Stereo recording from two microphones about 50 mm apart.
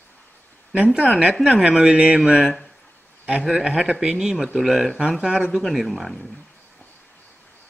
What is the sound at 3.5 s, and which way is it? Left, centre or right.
Speech, centre.